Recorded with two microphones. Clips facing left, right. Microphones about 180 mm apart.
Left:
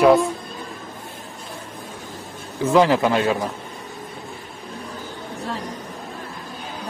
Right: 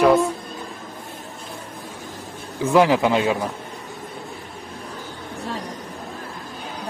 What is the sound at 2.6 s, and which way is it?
Speech, 10° right (ahead or behind).